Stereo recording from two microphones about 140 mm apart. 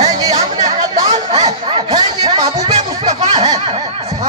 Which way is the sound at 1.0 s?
50° right (ahead or behind).